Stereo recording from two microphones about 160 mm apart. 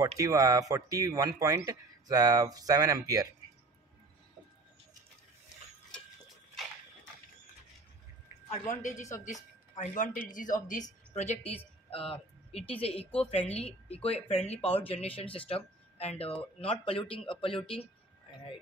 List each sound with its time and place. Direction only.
0.0 s speech: 20° right (ahead or behind)
8.5 s speech: 50° left (ahead or behind)
11.1 s a woman's voice: 40° left (ahead or behind)